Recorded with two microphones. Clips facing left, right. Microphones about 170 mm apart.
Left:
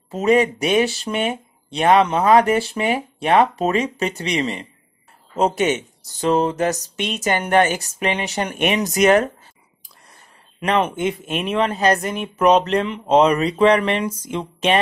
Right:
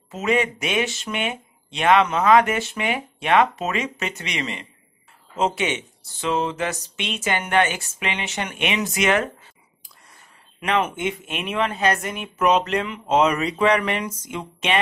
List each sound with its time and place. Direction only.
0.1 s speech: 35° left (ahead or behind)
10.6 s speech: 35° left (ahead or behind)